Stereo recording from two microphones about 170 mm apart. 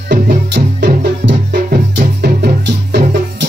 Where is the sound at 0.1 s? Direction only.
70° right (ahead or behind).